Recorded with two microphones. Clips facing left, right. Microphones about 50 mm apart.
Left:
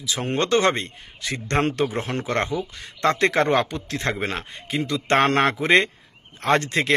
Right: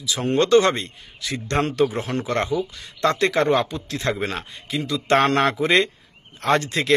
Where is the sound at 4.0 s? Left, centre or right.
Left.